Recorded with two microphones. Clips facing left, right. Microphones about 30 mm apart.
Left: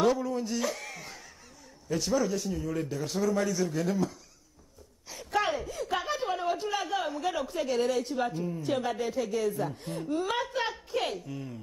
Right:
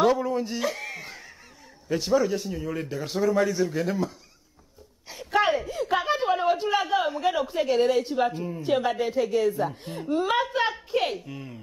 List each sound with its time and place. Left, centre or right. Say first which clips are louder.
0.0 s a man's voice: right 4 dB; right
5.1 s a man's voice: right 6 dB; right